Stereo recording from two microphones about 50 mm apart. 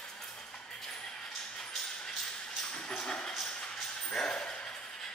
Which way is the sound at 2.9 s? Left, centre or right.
Left.